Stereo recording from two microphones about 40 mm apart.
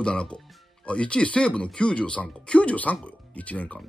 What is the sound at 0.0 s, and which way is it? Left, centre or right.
Speech, left.